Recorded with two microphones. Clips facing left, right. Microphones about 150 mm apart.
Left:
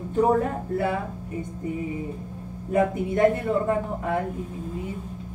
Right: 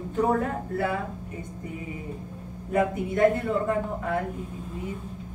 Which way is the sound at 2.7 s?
25° left (ahead or behind).